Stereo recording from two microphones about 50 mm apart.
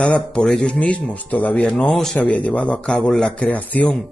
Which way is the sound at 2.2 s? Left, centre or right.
Left.